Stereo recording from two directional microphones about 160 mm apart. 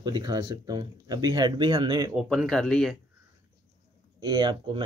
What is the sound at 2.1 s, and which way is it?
Speech, centre (ahead or behind).